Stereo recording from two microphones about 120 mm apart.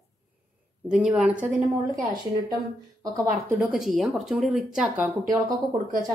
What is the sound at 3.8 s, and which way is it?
Speech, centre (ahead or behind).